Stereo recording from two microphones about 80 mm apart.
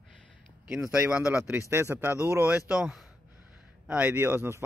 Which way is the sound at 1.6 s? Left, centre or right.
Right.